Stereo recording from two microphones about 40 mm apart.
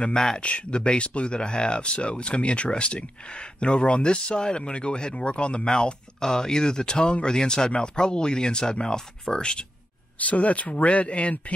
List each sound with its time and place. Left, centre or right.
0.4 s speech: left
10.2 s speech: left